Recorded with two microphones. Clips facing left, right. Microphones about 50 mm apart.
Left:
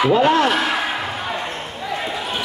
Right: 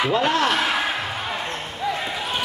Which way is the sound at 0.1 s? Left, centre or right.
Centre.